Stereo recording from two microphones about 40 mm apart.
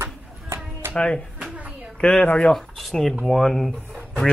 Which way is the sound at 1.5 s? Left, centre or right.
Right.